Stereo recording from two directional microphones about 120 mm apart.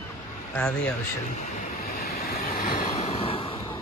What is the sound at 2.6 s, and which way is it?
Vehicle, 90° left.